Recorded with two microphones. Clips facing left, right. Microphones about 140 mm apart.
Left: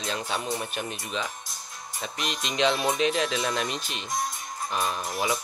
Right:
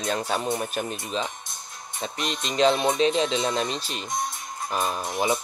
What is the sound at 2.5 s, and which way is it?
Speech, 40° right (ahead or behind).